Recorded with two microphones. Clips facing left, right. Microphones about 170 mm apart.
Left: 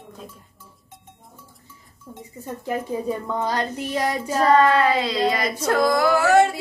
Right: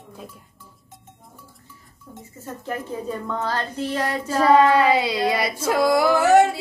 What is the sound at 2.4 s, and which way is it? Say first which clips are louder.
A woman's voice: left 3 dB; 15° left (ahead or behind).